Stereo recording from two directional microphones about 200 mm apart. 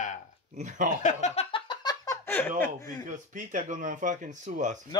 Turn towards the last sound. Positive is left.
turn(degrees=-40)  # may be behind; listen again after turning